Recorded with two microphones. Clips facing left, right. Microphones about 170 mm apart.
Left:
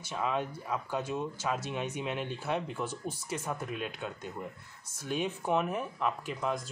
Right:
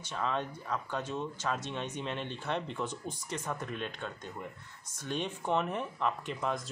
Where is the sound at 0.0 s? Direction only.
10° left (ahead or behind).